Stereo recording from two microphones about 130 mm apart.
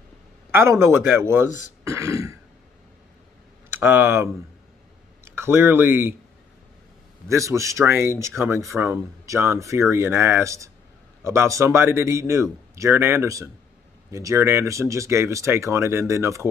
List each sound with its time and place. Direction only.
0.5 s speech: 20° right (ahead or behind)
3.8 s speech: 15° right (ahead or behind)
7.2 s speech: 25° right (ahead or behind)